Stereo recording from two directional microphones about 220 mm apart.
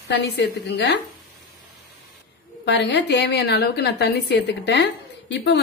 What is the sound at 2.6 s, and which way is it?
A woman's voice, 55° left (ahead or behind).